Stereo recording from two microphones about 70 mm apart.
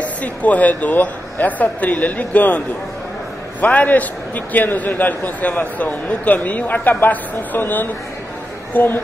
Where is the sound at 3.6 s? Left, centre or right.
Left.